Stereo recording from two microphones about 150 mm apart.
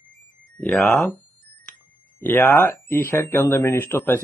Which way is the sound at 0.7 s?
Centre (ahead or behind).